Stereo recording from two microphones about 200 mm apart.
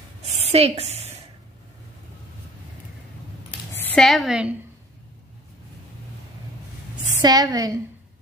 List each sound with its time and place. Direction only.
0.2 s a sound: 35° right (ahead or behind)
3.7 s speech: 10° left (ahead or behind)
7.0 s a woman's voice: 20° right (ahead or behind)